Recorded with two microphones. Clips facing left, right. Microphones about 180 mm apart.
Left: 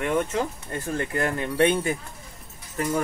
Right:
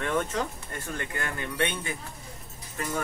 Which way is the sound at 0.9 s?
35° left (ahead or behind).